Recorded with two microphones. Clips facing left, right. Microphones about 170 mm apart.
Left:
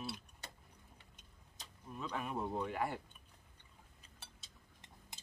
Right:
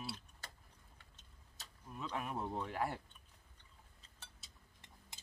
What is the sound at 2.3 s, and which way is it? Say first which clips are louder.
Speech: left 2 dB; 10° left (ahead or behind).